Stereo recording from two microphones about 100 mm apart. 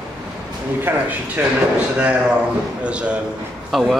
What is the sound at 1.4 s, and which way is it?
Speech, 15° right (ahead or behind).